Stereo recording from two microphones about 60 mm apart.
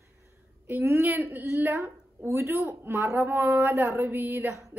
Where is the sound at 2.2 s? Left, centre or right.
Right.